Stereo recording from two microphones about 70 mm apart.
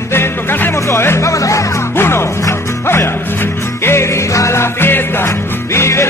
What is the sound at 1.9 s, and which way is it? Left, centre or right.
Music, left.